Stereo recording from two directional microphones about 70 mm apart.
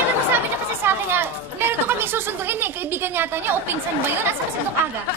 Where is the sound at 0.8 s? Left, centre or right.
Right.